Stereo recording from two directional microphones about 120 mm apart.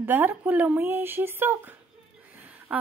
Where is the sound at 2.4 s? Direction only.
15° right (ahead or behind).